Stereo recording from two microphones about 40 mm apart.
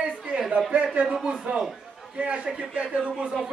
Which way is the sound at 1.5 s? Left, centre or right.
Right.